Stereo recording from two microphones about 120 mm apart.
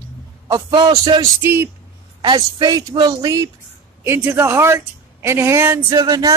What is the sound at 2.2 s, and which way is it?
Speech, 35° right (ahead or behind).